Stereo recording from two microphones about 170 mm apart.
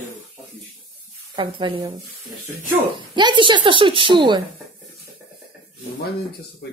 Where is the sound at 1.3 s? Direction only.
30° right (ahead or behind).